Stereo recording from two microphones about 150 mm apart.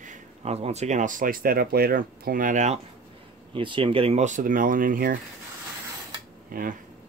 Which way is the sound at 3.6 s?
35° right (ahead or behind).